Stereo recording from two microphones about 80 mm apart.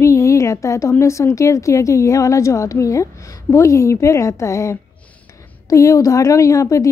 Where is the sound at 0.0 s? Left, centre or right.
Left.